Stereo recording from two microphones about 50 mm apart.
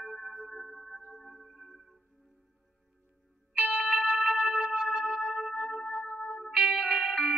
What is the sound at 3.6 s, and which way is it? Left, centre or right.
Music, centre.